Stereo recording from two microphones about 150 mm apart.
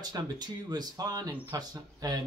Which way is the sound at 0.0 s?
25° right (ahead or behind).